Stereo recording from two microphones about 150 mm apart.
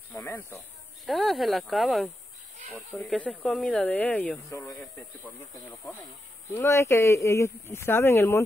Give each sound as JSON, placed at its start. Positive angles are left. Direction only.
{"t": 0.1, "sound": "a sound", "side_deg": 15}
{"t": 1.0, "sound": "speech", "side_deg": 0}
{"t": 3.1, "sound": "speech", "side_deg": 5}
{"t": 4.5, "sound": "speech", "side_deg": 20}
{"t": 6.5, "sound": "speech", "side_deg": 20}